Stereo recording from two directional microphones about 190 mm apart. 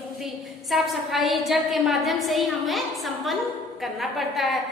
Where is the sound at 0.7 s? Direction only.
Centre (ahead or behind).